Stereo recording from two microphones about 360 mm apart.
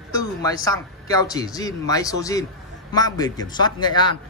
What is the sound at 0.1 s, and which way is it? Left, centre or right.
A man's voice, centre.